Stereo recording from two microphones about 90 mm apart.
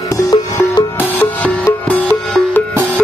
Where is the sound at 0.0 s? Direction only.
40° left (ahead or behind).